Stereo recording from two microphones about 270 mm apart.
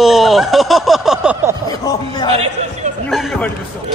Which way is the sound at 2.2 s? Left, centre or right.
Right.